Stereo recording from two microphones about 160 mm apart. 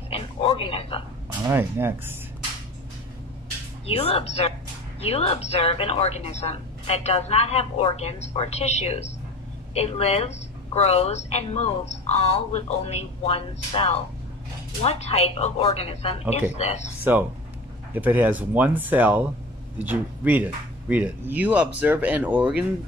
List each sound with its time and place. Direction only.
0.1 s a sound: 35° left (ahead or behind)
1.4 s speech: 15° right (ahead or behind)
3.8 s a woman's voice: 40° left (ahead or behind)
17.0 s speech: 10° right (ahead or behind)